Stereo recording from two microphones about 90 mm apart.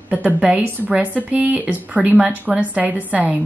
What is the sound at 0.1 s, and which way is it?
A woman's voice, 15° right (ahead or behind).